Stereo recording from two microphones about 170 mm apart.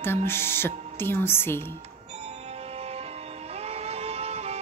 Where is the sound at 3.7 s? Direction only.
35° right (ahead or behind).